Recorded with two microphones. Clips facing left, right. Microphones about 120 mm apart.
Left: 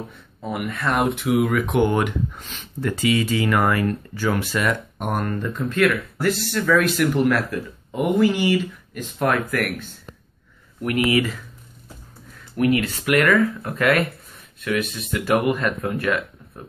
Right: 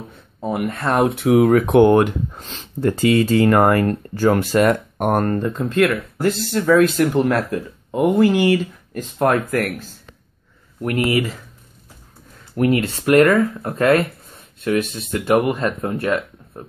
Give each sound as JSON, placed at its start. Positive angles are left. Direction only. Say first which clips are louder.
{"t": 0.4, "sound": "speech", "louder": "right 4 dB", "side_deg": -35}
{"t": 8.2, "sound": "speech", "louder": "right 3 dB", "side_deg": -50}
{"t": 12.5, "sound": "speech", "louder": "right 2 dB", "side_deg": -30}